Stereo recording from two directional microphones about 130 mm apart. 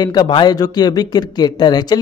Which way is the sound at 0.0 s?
35° left (ahead or behind).